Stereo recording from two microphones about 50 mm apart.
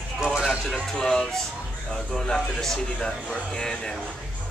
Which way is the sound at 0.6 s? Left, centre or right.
Centre.